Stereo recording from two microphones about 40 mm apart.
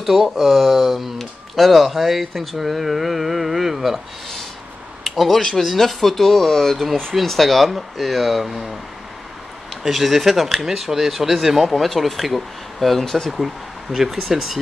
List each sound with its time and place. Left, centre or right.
0.0 s speech: centre
5.0 s speech: centre
9.8 s speech: centre
13.0 s speech: centre
13.9 s speech: centre